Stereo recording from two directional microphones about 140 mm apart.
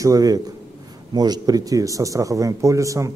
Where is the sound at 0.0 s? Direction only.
25° right (ahead or behind).